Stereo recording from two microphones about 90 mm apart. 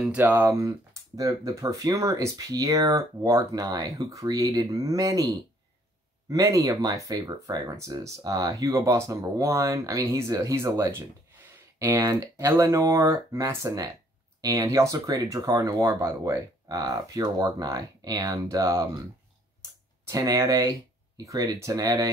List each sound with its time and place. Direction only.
0.1 s speech: 25° right (ahead or behind)
19.6 s a sound: 40° right (ahead or behind)
21.2 s speech: 40° right (ahead or behind)